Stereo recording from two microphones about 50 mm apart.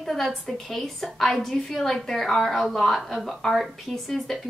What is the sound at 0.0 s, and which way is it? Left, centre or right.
A woman's voice, centre.